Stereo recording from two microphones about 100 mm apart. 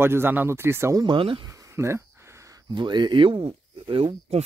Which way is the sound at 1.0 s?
55° right (ahead or behind).